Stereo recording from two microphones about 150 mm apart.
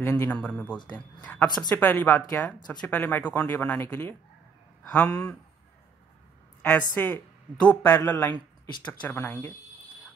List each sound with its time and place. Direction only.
0.0 s speech: 15° left (ahead or behind)
6.6 s a woman's voice: 10° left (ahead or behind)